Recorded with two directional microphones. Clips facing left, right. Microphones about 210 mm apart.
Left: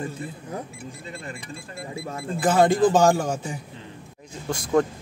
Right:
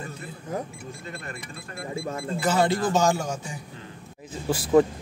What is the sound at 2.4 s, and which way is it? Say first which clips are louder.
Speech: left 5 dB; 50° left (ahead or behind).